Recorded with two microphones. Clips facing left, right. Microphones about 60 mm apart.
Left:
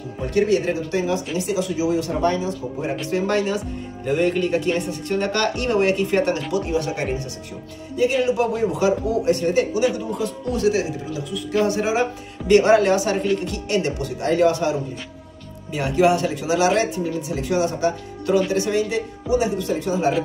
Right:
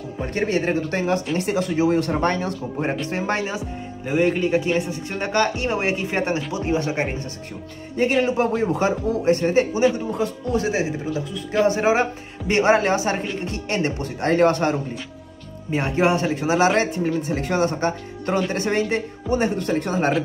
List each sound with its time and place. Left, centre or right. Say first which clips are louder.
0.3 s speech: left 3 dB; right
3.1 s speech: left 3 dB; right
15.7 s speech: left 2 dB; right